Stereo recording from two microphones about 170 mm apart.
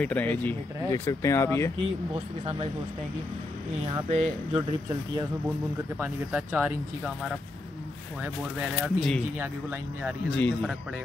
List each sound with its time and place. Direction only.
0.0 s speech: 10° left (ahead or behind)
2.1 s speech: 35° right (ahead or behind)
4.1 s speech: 30° right (ahead or behind)
5.9 s speech: 10° right (ahead or behind)
8.2 s speech: 5° right (ahead or behind)
10.3 s speech: 5° left (ahead or behind)